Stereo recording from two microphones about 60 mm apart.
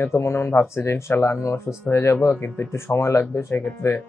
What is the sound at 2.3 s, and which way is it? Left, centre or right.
Speech, left.